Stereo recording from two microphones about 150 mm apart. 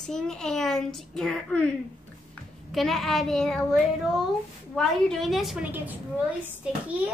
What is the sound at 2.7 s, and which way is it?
A woman's voice, centre (ahead or behind).